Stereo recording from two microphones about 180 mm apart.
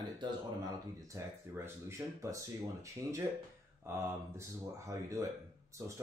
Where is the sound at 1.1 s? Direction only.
15° right (ahead or behind).